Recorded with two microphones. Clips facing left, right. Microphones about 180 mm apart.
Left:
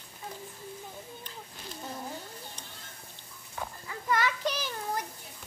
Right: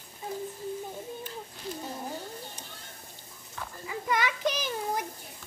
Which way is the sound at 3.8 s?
15° right (ahead or behind).